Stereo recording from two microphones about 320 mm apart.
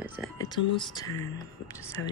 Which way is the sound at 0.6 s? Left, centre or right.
Left.